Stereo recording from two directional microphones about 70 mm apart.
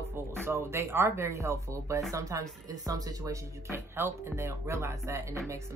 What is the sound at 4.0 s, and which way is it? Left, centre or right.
Speech, right.